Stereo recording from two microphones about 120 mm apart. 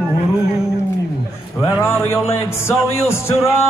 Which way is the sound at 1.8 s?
20° left (ahead or behind).